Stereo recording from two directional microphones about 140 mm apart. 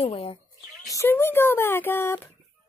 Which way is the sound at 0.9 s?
20° left (ahead or behind).